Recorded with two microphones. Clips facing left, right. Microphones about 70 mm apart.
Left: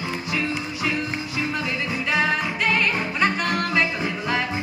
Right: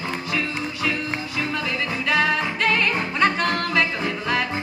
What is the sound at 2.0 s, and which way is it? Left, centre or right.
Music, centre.